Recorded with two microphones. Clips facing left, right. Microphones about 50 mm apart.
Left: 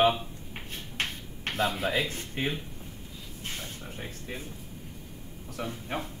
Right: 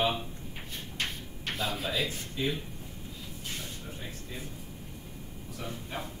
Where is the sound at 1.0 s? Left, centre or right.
Left.